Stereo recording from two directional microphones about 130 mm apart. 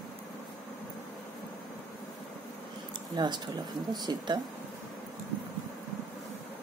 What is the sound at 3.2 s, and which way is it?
Speech, 35° right (ahead or behind).